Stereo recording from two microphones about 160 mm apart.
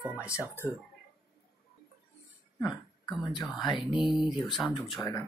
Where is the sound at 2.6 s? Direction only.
Centre (ahead or behind).